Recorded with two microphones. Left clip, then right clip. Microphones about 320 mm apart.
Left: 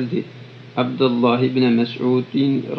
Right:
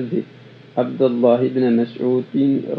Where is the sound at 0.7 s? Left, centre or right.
Centre.